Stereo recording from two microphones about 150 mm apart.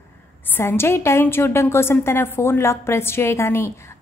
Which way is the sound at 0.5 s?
15° left (ahead or behind).